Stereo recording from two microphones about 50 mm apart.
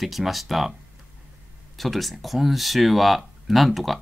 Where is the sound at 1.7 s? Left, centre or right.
Centre.